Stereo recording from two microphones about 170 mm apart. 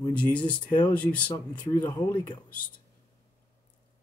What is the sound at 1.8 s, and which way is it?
Speech, 25° left (ahead or behind).